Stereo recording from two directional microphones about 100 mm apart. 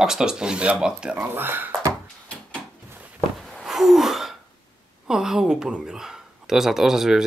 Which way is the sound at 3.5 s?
Centre (ahead or behind).